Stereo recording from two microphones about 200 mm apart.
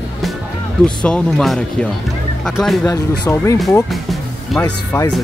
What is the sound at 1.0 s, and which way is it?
Speech, 5° left (ahead or behind).